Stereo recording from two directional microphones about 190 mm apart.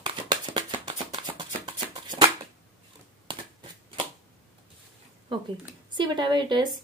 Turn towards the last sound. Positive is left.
turn(degrees=-25)  # may be behind; listen again after turning